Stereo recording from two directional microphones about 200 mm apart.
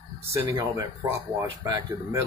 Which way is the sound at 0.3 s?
15° right (ahead or behind).